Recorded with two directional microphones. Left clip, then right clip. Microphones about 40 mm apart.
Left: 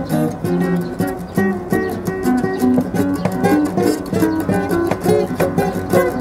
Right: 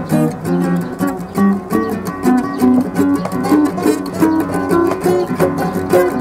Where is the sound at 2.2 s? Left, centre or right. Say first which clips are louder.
Right 4 dB; right.